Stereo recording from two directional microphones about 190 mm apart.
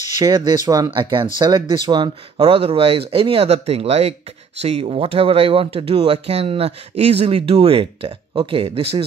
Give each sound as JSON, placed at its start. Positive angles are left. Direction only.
{"t": 0.2, "sound": "speech", "side_deg": -20}